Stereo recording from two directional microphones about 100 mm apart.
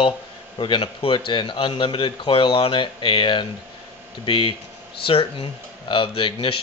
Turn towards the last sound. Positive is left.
turn(degrees=60)  # may be behind; listen again after turning